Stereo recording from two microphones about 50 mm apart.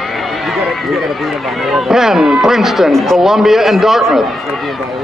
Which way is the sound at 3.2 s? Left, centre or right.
Centre.